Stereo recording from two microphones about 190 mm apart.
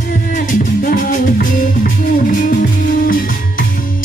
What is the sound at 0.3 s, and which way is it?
Music, 45° left (ahead or behind).